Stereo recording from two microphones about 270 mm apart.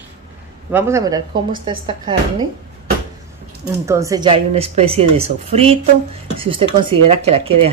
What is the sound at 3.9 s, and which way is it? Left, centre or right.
A woman's voice, centre.